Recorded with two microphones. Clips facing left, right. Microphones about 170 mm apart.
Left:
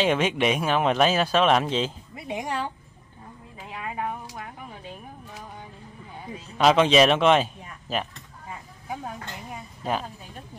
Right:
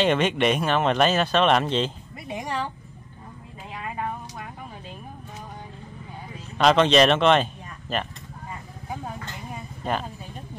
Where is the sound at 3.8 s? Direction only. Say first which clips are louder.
Even; 5° left (ahead or behind).